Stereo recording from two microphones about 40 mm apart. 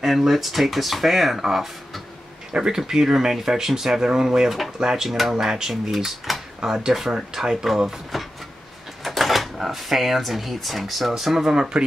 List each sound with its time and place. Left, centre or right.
0.0 s speech: centre
2.5 s speech: centre
5.0 s speech: centre
5.3 s speech: centre
8.1 s a sound: centre
9.0 s speech: centre